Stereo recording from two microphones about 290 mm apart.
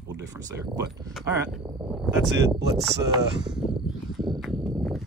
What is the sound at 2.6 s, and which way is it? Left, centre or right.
Speech, right.